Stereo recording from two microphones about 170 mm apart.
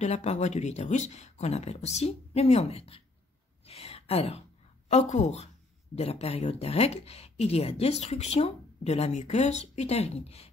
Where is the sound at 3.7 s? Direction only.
35° left (ahead or behind).